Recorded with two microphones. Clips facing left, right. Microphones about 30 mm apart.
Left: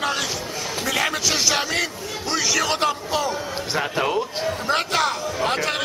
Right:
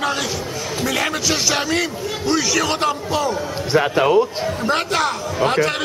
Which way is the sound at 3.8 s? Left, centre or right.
Centre.